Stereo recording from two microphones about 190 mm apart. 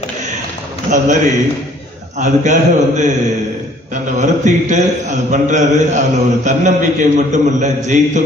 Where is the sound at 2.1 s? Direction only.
40° right (ahead or behind).